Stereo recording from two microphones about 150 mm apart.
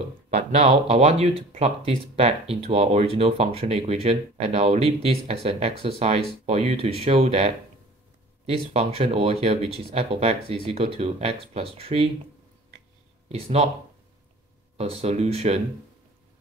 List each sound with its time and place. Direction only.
0.3 s speech: 45° right (ahead or behind)
13.3 s speech: 45° right (ahead or behind)
14.8 s speech: 40° right (ahead or behind)